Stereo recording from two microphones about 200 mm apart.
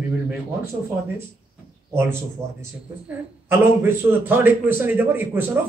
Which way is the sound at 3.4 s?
10° right (ahead or behind).